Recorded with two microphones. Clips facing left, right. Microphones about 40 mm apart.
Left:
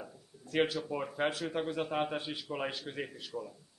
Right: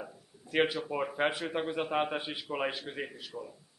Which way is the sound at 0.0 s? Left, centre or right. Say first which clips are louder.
Right 3 dB; right.